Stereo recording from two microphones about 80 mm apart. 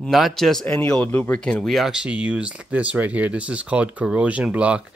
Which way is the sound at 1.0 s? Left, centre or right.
Left.